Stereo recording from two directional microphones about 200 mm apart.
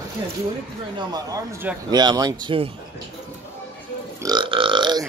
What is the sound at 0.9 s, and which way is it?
A man's voice, 20° right (ahead or behind).